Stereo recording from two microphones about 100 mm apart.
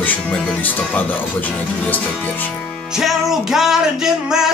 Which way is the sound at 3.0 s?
5° right (ahead or behind).